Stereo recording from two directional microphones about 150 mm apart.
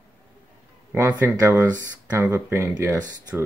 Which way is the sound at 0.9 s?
25° right (ahead or behind).